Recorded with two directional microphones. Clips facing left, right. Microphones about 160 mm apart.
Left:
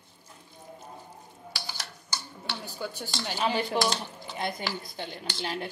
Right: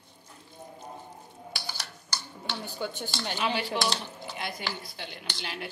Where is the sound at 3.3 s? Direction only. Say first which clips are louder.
Left 3 dB; 40° left (ahead or behind).